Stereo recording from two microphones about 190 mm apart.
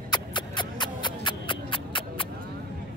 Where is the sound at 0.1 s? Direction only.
25° left (ahead or behind).